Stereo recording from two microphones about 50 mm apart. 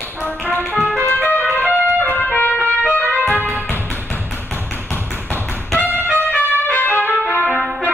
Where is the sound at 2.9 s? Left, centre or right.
Left.